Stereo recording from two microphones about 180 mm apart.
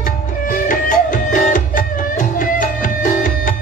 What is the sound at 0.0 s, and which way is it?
Music, 50° left (ahead or behind).